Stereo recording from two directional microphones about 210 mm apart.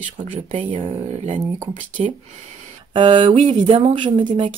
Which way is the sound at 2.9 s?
25° right (ahead or behind).